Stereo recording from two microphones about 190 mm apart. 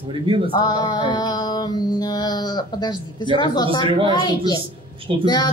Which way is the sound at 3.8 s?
30° right (ahead or behind).